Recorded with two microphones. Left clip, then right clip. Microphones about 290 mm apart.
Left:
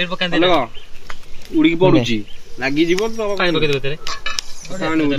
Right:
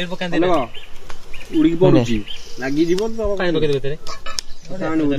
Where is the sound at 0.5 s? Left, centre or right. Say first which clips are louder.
Left 3 dB; centre.